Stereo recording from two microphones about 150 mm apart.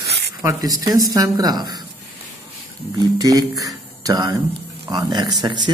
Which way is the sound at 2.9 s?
25° right (ahead or behind).